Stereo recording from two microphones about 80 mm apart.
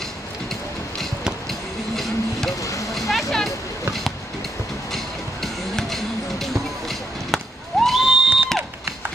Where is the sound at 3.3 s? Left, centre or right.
Centre.